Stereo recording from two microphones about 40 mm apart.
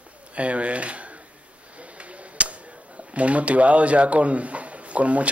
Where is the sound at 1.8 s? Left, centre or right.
Right.